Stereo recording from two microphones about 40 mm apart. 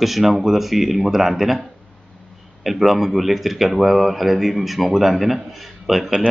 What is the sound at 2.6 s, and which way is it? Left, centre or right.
Speech, centre.